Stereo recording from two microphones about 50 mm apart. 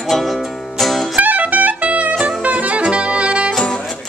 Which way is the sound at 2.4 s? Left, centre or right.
Right.